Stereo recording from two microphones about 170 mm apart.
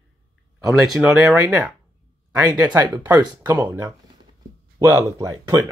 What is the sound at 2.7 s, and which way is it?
Speech, 20° right (ahead or behind).